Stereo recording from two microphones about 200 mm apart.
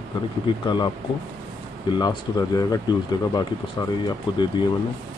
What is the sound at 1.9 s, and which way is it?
Speech, 20° left (ahead or behind).